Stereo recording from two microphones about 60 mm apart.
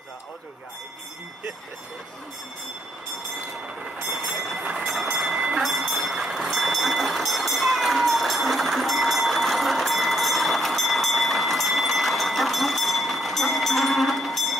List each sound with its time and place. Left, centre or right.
4.1 s train: centre